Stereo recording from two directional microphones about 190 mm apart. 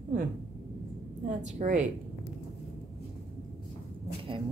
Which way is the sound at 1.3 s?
40° right (ahead or behind).